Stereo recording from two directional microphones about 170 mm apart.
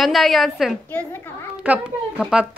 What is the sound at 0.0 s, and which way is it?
Speech, centre (ahead or behind).